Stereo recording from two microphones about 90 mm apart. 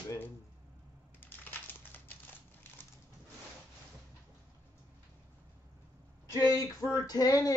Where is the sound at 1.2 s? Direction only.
20° left (ahead or behind).